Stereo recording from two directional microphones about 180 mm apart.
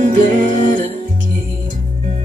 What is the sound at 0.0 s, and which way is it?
Music, 45° right (ahead or behind).